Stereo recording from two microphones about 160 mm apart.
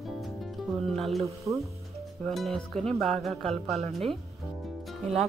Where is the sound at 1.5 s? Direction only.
20° right (ahead or behind).